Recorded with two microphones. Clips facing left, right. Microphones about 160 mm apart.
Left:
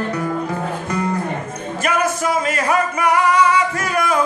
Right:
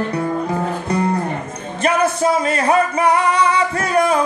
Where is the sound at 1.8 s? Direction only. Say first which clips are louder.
Right 4 dB; 30° right (ahead or behind).